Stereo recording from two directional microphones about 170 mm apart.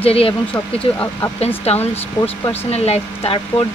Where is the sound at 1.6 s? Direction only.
35° left (ahead or behind).